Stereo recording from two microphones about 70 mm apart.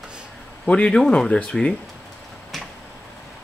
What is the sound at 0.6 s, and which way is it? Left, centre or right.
Speech, centre.